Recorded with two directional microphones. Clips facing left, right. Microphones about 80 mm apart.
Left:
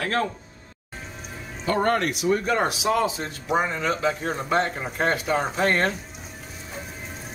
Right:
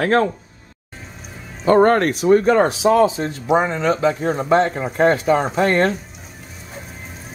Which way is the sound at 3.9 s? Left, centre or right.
Centre.